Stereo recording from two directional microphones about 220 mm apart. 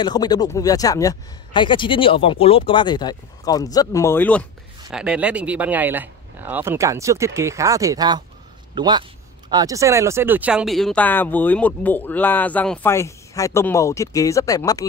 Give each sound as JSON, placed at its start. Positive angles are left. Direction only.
{"t": 0.0, "sound": "speech", "side_deg": 20}
{"t": 4.9, "sound": "a man's voice", "side_deg": -5}